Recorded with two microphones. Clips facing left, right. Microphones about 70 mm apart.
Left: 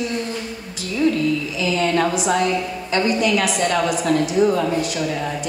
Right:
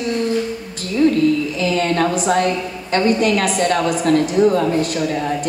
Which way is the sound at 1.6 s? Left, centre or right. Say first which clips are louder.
Even; right.